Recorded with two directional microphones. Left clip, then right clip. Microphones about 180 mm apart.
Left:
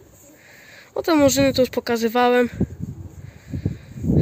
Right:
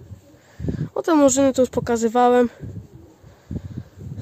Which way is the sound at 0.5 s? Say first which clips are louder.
Right 12 dB; 15° right (ahead or behind).